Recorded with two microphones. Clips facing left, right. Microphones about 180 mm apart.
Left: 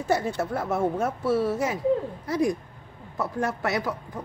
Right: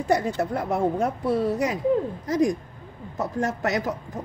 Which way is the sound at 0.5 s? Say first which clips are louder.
Right 2 dB; 20° right (ahead or behind).